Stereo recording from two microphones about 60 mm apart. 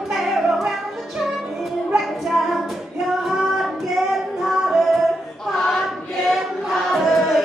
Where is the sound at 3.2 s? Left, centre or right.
Centre.